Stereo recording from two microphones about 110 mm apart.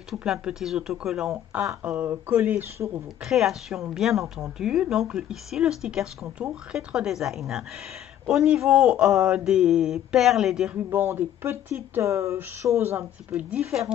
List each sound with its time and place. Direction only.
0.1 s a woman's voice: 5° right (ahead or behind)
1.7 s speech: 15° right (ahead or behind)
3.3 s a woman's voice: 5° right (ahead or behind)
10.9 s speech: 20° right (ahead or behind)
13.3 s speech: 10° right (ahead or behind)